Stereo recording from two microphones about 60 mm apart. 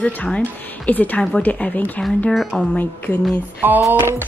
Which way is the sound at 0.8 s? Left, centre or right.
Left.